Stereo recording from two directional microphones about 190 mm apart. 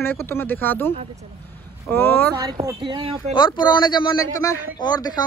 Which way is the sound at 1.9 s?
10° left (ahead or behind).